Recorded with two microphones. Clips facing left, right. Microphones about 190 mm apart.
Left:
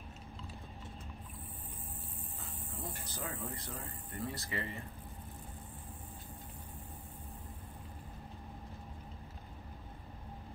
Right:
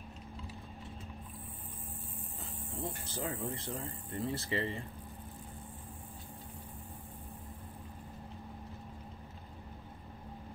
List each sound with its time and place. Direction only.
2.8 s speech: 25° right (ahead or behind)